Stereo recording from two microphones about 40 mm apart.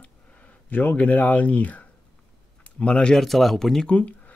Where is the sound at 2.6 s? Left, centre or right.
Left.